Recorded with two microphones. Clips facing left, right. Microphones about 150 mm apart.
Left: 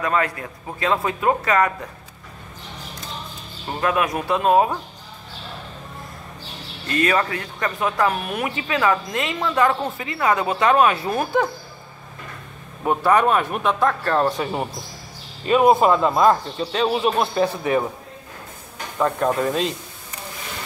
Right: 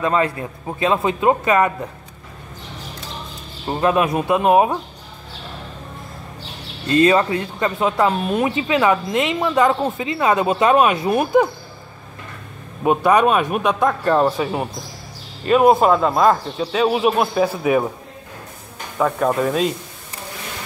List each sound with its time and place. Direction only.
0.0 s a woman's voice: 25° right (ahead or behind)
3.6 s a woman's voice: 25° right (ahead or behind)
6.9 s a woman's voice: 25° right (ahead or behind)
12.8 s speech: 15° right (ahead or behind)
18.9 s speech: centre (ahead or behind)